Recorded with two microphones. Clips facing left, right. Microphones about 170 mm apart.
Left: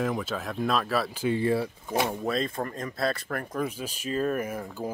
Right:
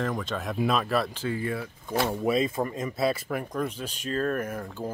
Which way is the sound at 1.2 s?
25° left (ahead or behind).